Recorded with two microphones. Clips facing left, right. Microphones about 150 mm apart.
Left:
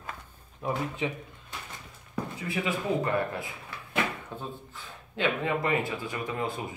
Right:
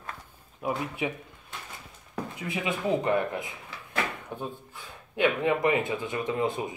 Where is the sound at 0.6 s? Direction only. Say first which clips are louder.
Even; 10° right (ahead or behind).